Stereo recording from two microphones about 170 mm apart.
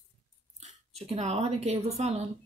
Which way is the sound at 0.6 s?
40° right (ahead or behind).